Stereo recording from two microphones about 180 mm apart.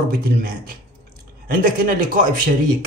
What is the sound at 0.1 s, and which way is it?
Speech, 55° right (ahead or behind).